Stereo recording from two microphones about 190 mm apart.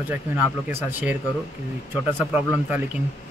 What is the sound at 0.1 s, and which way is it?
Speech, 10° right (ahead or behind).